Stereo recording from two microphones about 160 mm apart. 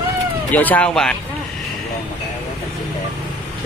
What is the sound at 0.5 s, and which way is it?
Speech, 10° left (ahead or behind).